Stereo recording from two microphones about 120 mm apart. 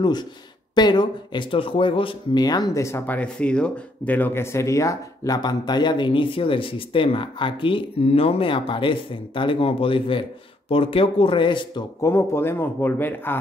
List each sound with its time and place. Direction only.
0.0 s speech: 35° left (ahead or behind)
3.2 s speech: 10° left (ahead or behind); by 11.8 s 40° left (ahead or behind)
12.0 s speech: 20° left (ahead or behind)